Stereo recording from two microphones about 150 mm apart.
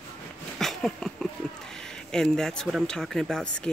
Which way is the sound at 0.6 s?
5° left (ahead or behind).